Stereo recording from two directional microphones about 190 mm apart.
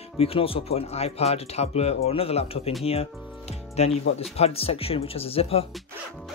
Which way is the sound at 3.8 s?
35° left (ahead or behind).